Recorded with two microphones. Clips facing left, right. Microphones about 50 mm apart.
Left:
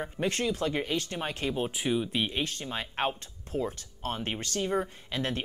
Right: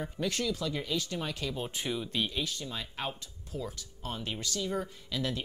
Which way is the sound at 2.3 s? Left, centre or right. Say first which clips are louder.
Left 3 dB; left.